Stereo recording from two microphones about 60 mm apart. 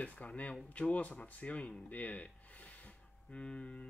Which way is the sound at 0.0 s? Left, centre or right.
Left.